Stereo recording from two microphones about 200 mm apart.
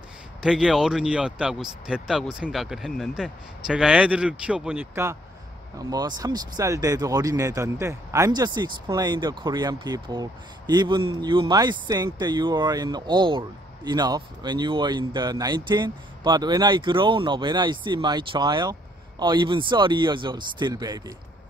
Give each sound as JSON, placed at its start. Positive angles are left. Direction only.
{"t": 0.4, "sound": "speech", "side_deg": -5}